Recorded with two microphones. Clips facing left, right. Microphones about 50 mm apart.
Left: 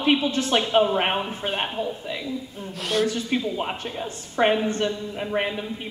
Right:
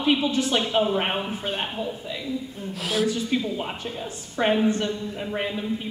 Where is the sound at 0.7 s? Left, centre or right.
Centre.